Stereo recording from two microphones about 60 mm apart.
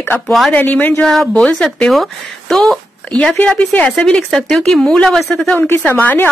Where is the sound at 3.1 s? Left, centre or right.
Centre.